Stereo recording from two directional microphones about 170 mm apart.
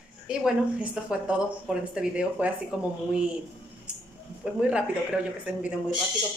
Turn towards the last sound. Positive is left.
turn(degrees=-5)  # may be behind; listen again after turning